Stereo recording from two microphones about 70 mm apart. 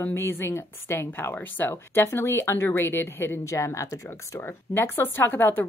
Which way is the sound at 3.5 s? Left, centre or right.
Left.